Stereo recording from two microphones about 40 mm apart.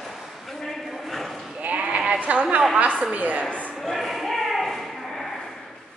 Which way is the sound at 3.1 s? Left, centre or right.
Right.